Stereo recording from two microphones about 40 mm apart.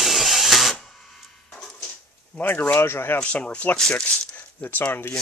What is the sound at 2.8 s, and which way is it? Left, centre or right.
Speech, left.